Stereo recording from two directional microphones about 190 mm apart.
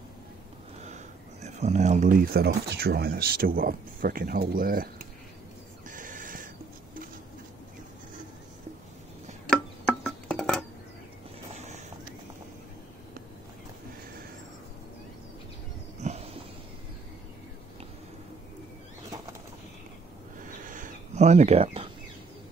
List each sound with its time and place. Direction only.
0.8 s speech: 35° right (ahead or behind)
5.9 s owl: 45° right (ahead or behind)
9.5 s music: 5° left (ahead or behind)
11.5 s vehicle: 35° right (ahead or behind)
16.0 s a sound: 40° right (ahead or behind)
20.4 s a sound: 45° right (ahead or behind)